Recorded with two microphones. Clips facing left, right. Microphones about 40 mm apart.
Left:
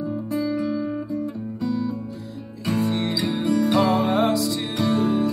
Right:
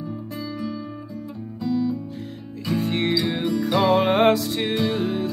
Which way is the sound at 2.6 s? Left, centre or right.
Left.